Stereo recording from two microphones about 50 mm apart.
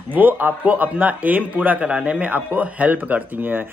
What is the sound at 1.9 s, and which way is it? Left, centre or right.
Speech, centre.